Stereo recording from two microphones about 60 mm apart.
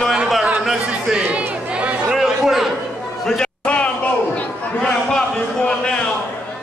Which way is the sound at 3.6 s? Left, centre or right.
Centre.